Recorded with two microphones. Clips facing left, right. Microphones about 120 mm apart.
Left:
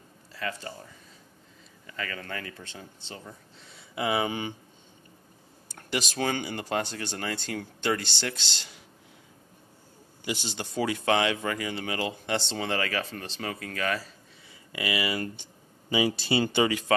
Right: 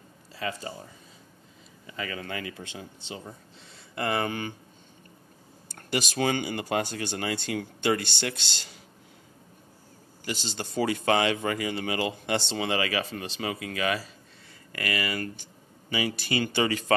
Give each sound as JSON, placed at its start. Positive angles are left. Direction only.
{"t": 0.3, "sound": "a sound", "side_deg": -20}
{"t": 1.9, "sound": "speech", "side_deg": -15}
{"t": 3.9, "sound": "speech", "side_deg": 5}
{"t": 5.8, "sound": "speech", "side_deg": -5}
{"t": 10.2, "sound": "speech", "side_deg": 10}
{"t": 14.7, "sound": "speech", "side_deg": 10}
{"t": 16.6, "sound": "speech", "side_deg": 10}